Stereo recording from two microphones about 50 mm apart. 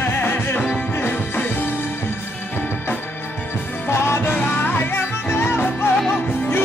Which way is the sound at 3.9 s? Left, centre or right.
Left.